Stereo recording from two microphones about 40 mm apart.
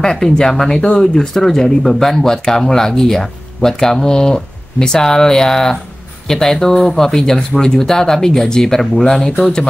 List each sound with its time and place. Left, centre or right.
0.0 s speech: centre